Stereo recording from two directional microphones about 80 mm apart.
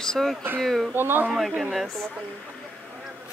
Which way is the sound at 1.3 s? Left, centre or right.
Centre.